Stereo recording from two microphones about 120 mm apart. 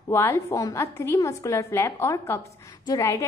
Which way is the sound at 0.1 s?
25° left (ahead or behind).